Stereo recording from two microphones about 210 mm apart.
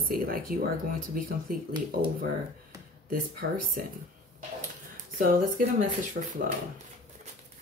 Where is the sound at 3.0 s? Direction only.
40° right (ahead or behind).